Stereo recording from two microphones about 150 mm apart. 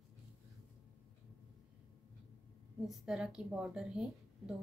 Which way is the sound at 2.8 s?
5° right (ahead or behind).